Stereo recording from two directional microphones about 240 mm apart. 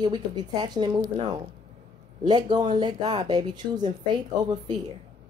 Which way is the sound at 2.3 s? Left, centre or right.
Centre.